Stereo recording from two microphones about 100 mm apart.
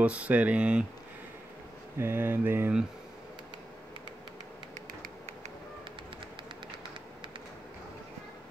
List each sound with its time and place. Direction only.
0.0 s speech: 15° right (ahead or behind)
2.0 s mantra: 20° right (ahead or behind)